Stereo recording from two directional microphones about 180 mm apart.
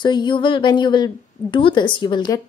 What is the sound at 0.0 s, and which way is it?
A woman's voice, 25° left (ahead or behind).